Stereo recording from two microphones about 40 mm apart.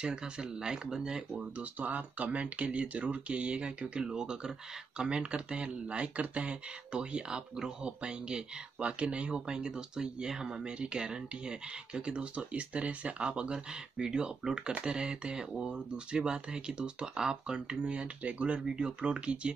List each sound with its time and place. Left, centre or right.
0.0 s speech: centre
1.6 s speech: right
18.7 s speech: right